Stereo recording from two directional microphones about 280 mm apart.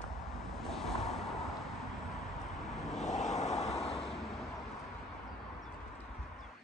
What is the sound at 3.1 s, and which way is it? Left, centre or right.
Vehicle, left.